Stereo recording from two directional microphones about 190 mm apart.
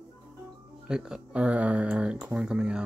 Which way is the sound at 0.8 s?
5° right (ahead or behind).